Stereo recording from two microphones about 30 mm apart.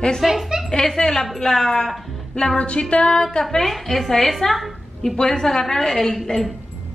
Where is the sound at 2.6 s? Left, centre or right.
Left.